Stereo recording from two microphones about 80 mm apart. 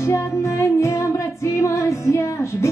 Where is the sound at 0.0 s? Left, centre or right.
Left.